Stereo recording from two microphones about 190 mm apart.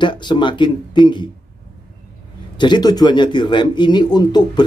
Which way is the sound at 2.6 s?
20° left (ahead or behind).